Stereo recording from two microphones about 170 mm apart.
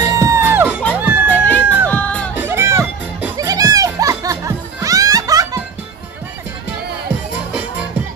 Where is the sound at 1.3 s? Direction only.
10° left (ahead or behind).